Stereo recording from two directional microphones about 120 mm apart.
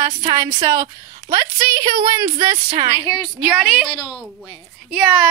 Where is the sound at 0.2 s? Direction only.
30° right (ahead or behind).